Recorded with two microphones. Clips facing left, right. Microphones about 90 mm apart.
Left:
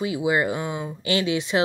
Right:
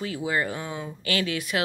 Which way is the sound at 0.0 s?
15° left (ahead or behind).